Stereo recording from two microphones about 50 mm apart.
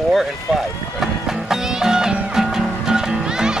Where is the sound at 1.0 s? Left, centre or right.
Centre.